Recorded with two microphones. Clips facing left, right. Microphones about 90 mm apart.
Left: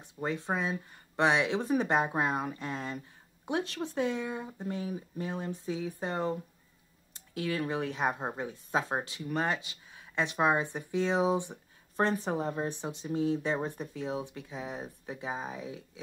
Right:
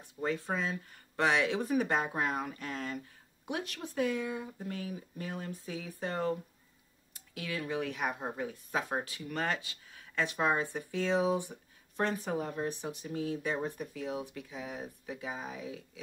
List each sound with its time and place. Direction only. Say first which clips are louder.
0.0 s speech: even; 20° left (ahead or behind)
7.2 s speech: left 6 dB; 35° left (ahead or behind)